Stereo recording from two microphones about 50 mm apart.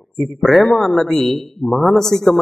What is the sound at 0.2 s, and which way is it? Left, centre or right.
A man's voice, centre.